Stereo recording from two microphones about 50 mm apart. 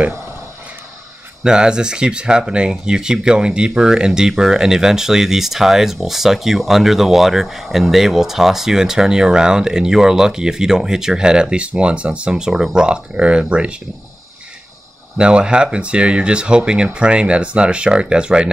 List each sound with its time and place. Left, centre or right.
1.4 s speech: centre
15.1 s speech: centre